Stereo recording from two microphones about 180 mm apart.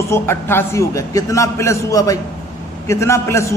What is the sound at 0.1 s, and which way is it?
A man's voice, 15° left (ahead or behind).